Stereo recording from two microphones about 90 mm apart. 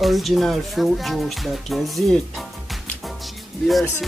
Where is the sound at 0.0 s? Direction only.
Centre (ahead or behind).